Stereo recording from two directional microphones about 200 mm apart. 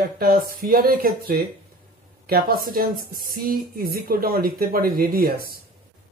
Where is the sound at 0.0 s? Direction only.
45° right (ahead or behind).